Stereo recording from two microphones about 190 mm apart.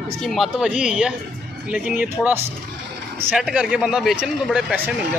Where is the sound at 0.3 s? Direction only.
Centre (ahead or behind).